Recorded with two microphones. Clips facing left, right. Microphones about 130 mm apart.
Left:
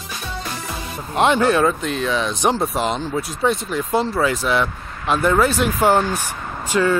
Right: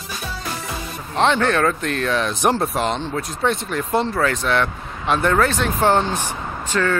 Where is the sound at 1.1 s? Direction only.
10° left (ahead or behind).